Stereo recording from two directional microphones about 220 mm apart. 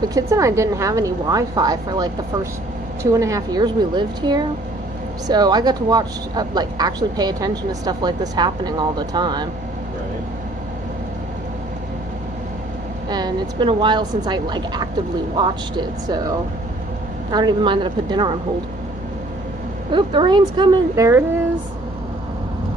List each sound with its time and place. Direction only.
0.1 s a woman's voice: 15° right (ahead or behind)
13.1 s a woman's voice: 20° right (ahead or behind)
19.9 s a woman's voice: 20° right (ahead or behind)